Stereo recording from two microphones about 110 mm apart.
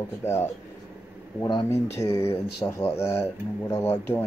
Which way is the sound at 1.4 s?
45° left (ahead or behind).